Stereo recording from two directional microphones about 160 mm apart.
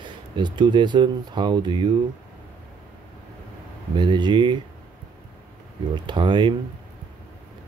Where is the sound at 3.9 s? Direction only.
30° right (ahead or behind).